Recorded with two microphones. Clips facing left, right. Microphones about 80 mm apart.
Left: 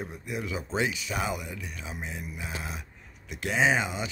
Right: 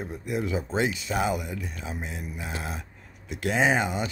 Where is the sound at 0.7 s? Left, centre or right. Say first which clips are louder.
Right 3 dB; right.